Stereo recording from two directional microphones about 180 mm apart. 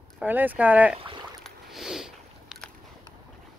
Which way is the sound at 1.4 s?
Centre (ahead or behind).